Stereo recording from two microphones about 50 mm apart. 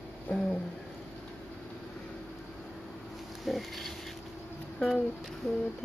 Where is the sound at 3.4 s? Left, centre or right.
Centre.